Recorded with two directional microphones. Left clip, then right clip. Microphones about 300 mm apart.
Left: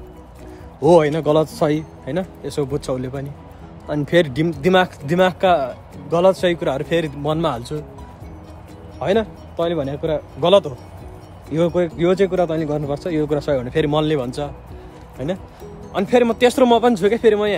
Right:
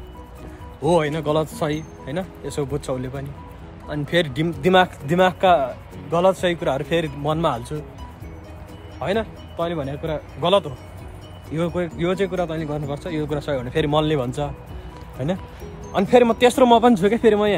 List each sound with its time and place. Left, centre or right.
0.8 s speech: left
9.0 s speech: centre
15.9 s speech: centre